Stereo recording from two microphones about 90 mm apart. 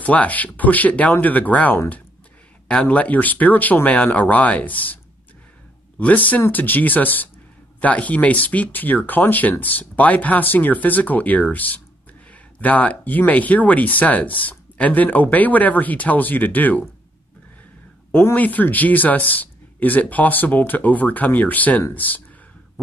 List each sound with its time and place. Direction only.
0.0 s speech: 15° left (ahead or behind)
18.2 s speech: 20° left (ahead or behind)